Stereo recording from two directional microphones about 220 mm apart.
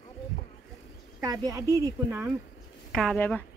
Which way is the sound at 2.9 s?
5° left (ahead or behind).